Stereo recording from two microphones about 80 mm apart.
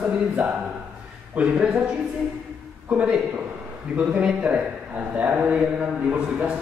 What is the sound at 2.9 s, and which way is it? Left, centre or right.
A man's voice, centre.